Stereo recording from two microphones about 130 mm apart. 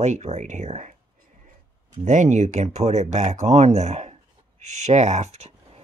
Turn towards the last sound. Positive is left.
turn(degrees=-55)  # may be behind; listen again after turning